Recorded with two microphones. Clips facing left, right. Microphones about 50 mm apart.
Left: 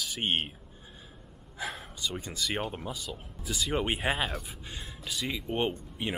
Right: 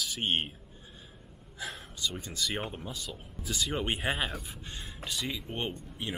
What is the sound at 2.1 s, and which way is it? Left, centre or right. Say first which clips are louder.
Speech: left 4 dB; centre.